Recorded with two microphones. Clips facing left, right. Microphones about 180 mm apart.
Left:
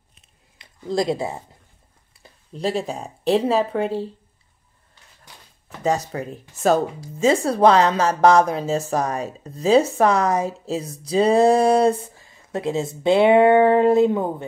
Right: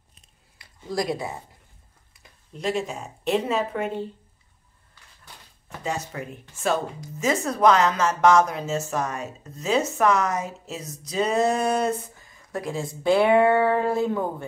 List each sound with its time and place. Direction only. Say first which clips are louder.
0.8 s speech: left 5 dB; 25° left (ahead or behind)
5.9 s speech: left 8 dB; 35° left (ahead or behind); by 14.3 s 20° left (ahead or behind)